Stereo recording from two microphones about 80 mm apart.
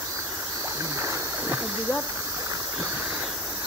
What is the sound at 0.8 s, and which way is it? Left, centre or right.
Stream, right.